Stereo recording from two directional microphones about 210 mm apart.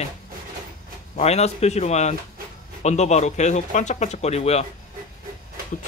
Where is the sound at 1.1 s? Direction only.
30° left (ahead or behind).